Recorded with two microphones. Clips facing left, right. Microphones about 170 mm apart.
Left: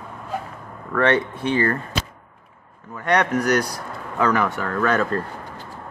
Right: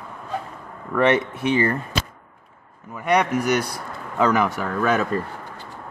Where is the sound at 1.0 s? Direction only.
15° right (ahead or behind).